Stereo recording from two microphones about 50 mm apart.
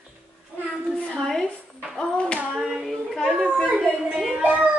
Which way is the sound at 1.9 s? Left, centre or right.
Centre.